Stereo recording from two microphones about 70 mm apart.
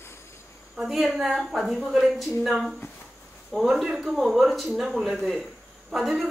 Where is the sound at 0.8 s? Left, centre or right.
Centre.